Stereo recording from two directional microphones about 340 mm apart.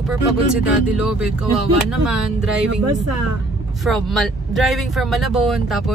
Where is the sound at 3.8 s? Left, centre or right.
Centre.